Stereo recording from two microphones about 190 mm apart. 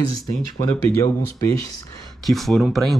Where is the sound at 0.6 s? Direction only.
15° left (ahead or behind).